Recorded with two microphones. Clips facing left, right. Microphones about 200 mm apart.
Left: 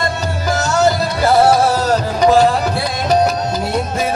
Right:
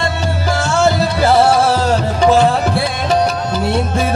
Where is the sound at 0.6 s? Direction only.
40° left (ahead or behind).